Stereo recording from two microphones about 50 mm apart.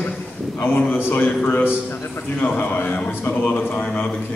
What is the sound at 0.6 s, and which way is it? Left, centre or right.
A man's voice, left.